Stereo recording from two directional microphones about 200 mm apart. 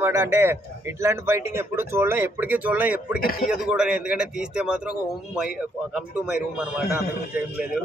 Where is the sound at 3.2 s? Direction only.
45° left (ahead or behind).